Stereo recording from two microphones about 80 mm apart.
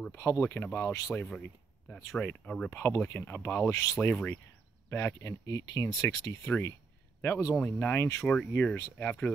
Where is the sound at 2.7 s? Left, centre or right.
Left.